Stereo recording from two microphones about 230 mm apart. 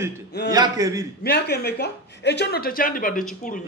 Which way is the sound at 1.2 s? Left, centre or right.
Left.